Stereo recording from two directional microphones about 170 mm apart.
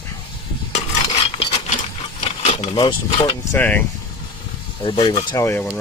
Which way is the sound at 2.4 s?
40° left (ahead or behind).